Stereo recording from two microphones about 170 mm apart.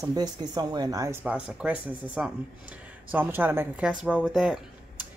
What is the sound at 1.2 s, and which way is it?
Speech, 5° right (ahead or behind).